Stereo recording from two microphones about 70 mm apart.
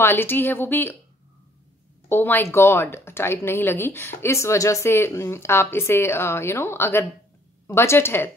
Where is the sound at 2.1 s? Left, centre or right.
Left.